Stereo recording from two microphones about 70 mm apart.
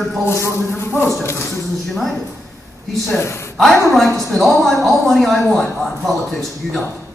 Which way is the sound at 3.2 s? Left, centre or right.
Left.